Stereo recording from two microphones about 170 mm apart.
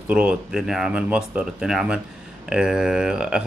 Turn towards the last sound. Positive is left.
turn(degrees=-5)  # may be behind; listen again after turning